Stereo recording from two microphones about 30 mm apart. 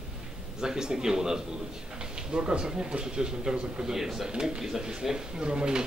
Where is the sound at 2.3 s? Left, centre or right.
Right; by 4.3 s centre.